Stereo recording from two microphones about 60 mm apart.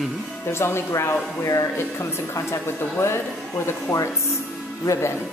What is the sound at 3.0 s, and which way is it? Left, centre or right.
Speech, left.